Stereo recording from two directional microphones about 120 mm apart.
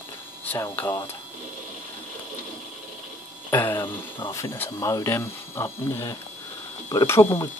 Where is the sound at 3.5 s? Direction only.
20° left (ahead or behind).